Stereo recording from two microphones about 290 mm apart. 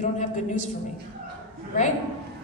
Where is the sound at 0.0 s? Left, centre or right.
Left.